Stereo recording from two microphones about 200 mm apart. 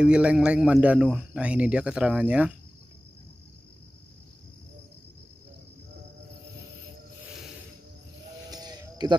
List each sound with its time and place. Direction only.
0.0 s speech: 5° right (ahead or behind)
8.5 s music: 20° right (ahead or behind)